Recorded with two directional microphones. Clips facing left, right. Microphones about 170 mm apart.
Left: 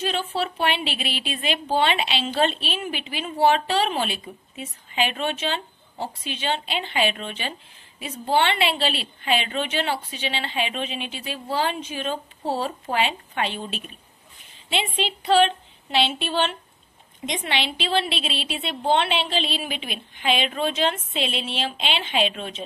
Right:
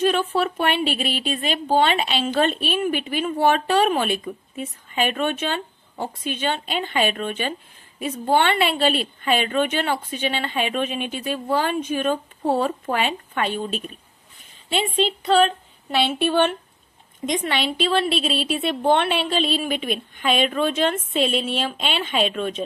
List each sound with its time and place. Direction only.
0.0 s a woman's voice: 50° right (ahead or behind)